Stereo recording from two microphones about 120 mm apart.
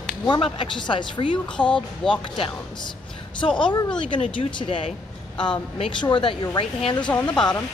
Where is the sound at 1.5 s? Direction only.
5° left (ahead or behind).